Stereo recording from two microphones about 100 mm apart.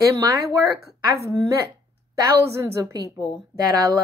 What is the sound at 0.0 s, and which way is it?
A woman's voice, 35° right (ahead or behind).